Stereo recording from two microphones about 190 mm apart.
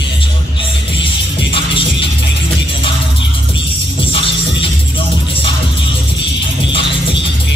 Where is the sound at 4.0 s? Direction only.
25° left (ahead or behind).